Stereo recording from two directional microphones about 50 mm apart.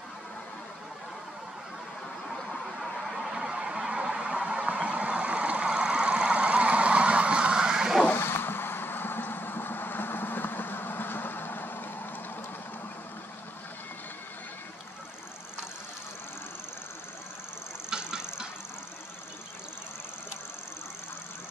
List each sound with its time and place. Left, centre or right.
2.8 s a sound: centre
8.1 s vehicle: left
17.8 s engine: centre